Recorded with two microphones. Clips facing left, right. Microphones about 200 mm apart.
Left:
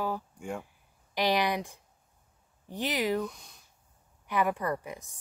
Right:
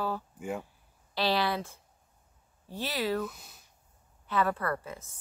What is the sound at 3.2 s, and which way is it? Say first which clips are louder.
Speech: left 1 dB; 5° right (ahead or behind).